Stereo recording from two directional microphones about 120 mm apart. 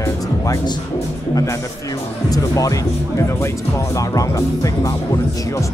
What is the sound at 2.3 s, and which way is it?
Speech, 30° left (ahead or behind).